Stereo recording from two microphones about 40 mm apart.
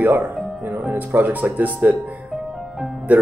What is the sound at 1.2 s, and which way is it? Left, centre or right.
Speech, right.